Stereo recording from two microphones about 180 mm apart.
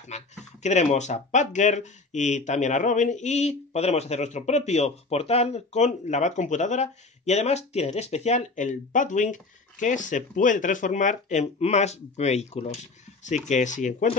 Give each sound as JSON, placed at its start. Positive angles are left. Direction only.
{"t": 0.1, "sound": "speech", "side_deg": 40}